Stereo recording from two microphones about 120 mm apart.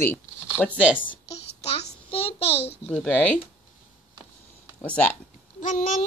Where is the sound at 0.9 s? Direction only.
45° left (ahead or behind).